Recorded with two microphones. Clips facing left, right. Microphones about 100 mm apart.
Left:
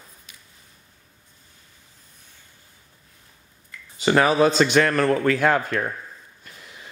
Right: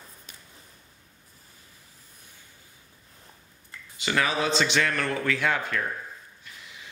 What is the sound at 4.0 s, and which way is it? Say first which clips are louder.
A man's voice: left 9 dB; 40° left (ahead or behind).